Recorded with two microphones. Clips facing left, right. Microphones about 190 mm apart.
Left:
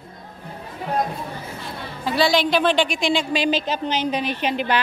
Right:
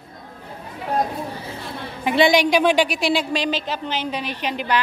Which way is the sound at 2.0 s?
15° right (ahead or behind).